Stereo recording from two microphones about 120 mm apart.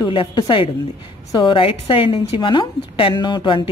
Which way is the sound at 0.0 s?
40° left (ahead or behind).